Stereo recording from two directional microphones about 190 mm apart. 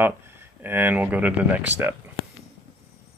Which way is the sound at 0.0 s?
10° right (ahead or behind).